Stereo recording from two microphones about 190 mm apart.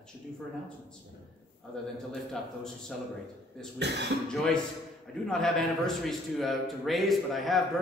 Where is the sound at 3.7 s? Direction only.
65° right (ahead or behind).